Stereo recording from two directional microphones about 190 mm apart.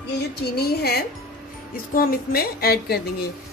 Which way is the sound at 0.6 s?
55° left (ahead or behind).